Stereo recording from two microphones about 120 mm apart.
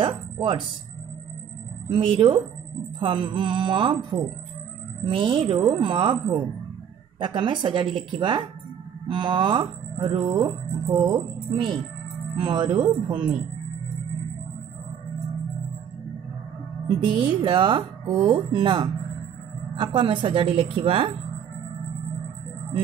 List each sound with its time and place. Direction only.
0.0 s speech: 45° right (ahead or behind)
1.9 s speech: 45° right (ahead or behind)
16.8 s speech: 35° right (ahead or behind)